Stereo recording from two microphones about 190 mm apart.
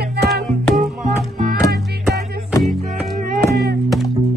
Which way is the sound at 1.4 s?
50° right (ahead or behind).